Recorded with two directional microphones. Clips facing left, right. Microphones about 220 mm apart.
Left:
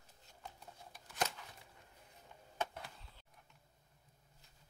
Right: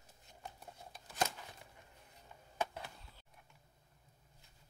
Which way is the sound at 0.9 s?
25° right (ahead or behind).